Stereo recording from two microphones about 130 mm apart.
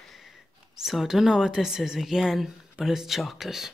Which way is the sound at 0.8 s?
Centre (ahead or behind).